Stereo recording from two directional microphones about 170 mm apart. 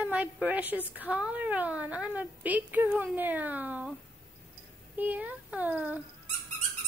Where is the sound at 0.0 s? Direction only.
10° right (ahead or behind).